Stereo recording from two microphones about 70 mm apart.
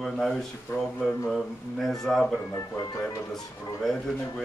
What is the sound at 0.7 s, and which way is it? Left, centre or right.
Speech, left.